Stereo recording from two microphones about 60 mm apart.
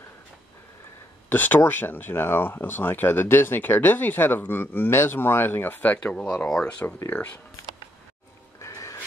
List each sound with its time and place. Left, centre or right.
1.3 s speech: left
6.1 s speech: centre
7.1 s speech: left
8.5 s a sound: left